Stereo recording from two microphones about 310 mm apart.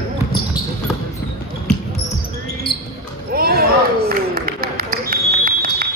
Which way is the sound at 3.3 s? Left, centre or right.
Right.